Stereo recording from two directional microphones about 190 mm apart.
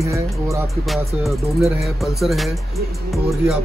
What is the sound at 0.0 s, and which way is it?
Speech, 15° right (ahead or behind).